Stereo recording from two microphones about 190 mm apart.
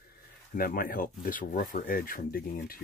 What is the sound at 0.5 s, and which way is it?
Speech, 50° left (ahead or behind).